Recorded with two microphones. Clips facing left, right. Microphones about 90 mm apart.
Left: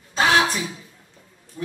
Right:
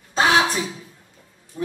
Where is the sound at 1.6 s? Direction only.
25° right (ahead or behind).